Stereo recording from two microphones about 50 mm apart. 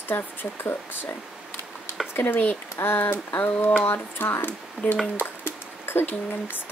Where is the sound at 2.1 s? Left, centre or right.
Left.